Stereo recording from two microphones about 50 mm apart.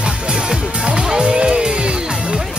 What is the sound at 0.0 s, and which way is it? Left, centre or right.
Music, centre.